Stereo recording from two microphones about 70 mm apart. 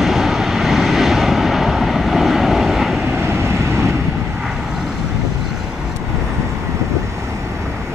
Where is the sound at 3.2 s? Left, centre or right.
Right.